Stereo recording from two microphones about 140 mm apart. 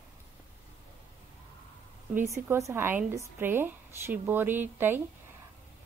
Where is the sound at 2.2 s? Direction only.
20° right (ahead or behind).